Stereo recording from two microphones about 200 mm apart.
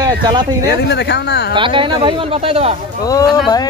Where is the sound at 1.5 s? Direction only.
25° right (ahead or behind).